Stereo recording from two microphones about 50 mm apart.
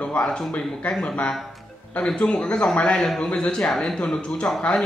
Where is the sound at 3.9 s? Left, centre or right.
Centre.